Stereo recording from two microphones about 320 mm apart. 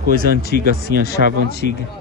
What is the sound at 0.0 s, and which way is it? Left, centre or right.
Speech, right.